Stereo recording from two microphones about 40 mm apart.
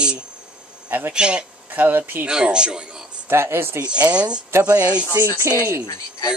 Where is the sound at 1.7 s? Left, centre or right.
Right.